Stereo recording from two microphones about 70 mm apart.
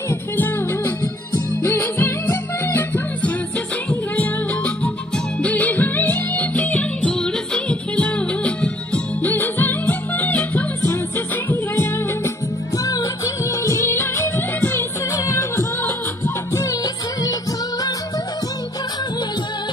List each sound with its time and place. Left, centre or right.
0.1 s music: left
9.3 s music: left
10.8 s music: left
12.7 s music: left
15.1 s music: left
16.8 s music: left